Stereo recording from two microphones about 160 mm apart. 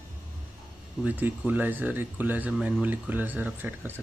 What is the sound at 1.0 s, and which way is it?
Speech, 10° right (ahead or behind).